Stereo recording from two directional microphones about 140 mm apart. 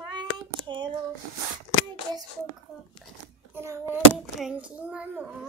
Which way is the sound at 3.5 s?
20° right (ahead or behind).